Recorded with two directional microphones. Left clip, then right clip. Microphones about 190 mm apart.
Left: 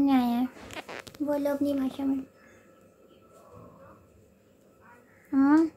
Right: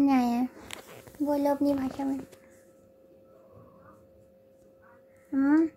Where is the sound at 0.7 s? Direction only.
50° right (ahead or behind).